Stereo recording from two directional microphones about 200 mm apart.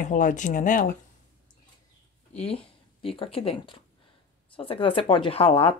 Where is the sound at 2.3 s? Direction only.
30° left (ahead or behind).